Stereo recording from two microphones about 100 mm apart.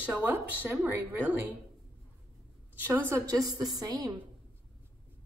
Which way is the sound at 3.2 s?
40° right (ahead or behind).